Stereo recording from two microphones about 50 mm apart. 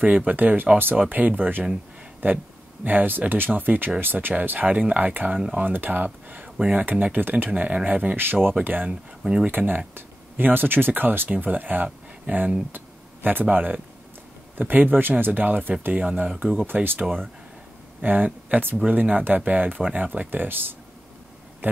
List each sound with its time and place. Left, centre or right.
0.3 s speech: right
7.5 s speech: right
8.2 s speech: right
9.2 s speech: centre
9.5 s speech: right
18.0 s speech: right
20.2 s speech: right